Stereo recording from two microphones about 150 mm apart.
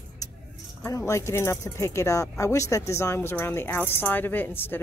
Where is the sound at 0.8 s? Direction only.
20° left (ahead or behind).